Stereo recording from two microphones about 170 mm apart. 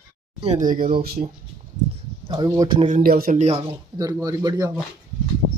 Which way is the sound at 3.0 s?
60° right (ahead or behind).